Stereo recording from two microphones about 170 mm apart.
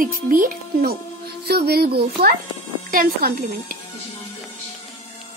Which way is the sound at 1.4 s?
65° right (ahead or behind).